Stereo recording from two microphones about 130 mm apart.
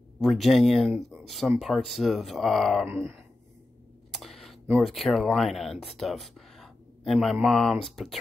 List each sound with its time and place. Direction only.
0.2 s speech: centre (ahead or behind)
2.9 s speech: 20° right (ahead or behind)
4.1 s a sound: centre (ahead or behind)
4.7 s speech: centre (ahead or behind)